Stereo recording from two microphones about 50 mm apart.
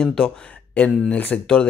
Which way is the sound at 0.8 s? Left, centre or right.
Left.